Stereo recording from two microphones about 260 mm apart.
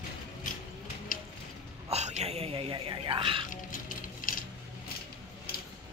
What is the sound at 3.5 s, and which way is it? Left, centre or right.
Music, left.